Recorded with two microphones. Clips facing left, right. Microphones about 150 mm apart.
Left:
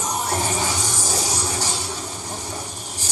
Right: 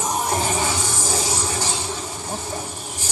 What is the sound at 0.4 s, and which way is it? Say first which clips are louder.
Music: right 1 dB; 15° left (ahead or behind).